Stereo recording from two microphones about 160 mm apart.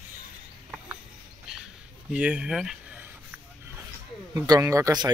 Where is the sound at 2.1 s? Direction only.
5° right (ahead or behind).